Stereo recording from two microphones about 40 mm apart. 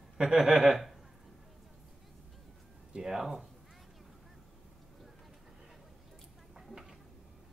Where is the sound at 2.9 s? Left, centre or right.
Centre.